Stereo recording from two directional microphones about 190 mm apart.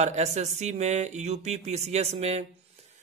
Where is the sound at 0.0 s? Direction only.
35° right (ahead or behind).